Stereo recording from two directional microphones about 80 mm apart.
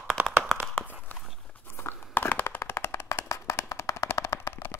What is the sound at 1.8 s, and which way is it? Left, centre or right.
Crumpling, left.